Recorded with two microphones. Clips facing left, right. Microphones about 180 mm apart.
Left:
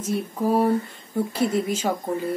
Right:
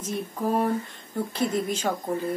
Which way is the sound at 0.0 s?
10° left (ahead or behind).